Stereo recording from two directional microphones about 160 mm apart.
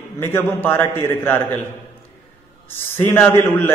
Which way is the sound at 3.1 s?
15° left (ahead or behind).